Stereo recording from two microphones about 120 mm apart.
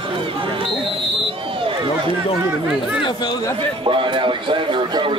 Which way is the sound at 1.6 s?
45° right (ahead or behind).